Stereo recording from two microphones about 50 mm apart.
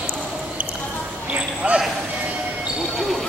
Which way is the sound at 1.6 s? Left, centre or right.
Right.